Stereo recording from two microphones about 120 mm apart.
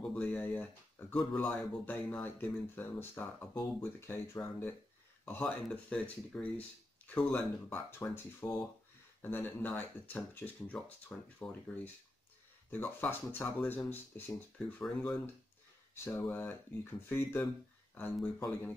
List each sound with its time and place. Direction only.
0.0 s speech: 10° left (ahead or behind)